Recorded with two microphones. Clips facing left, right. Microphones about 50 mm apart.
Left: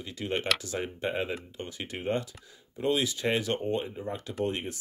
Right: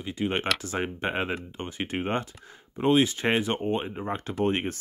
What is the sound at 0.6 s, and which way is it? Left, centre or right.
Speech, right.